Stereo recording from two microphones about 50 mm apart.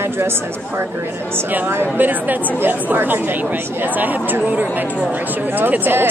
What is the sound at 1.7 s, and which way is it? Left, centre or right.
Speech, right.